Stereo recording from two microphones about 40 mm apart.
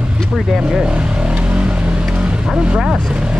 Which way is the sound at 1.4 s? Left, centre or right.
Right.